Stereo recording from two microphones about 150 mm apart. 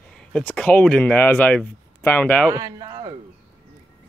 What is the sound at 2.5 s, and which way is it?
Speech, 25° right (ahead or behind).